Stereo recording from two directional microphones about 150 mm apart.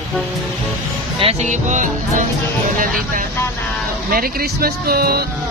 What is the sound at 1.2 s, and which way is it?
Music, 50° right (ahead or behind).